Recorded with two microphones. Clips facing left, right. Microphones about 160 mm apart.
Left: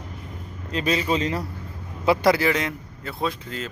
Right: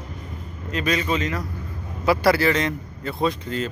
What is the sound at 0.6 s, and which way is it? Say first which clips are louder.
Speech: even; 30° left (ahead or behind).